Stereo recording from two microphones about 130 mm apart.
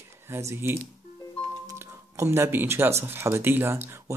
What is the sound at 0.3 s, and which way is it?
Speech, 20° right (ahead or behind).